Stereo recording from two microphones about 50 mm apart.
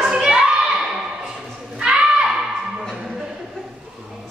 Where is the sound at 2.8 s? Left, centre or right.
Centre.